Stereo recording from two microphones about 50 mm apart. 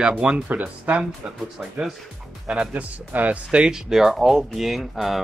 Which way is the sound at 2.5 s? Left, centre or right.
Right.